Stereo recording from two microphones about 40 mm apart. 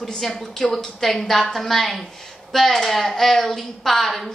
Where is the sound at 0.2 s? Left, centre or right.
Centre.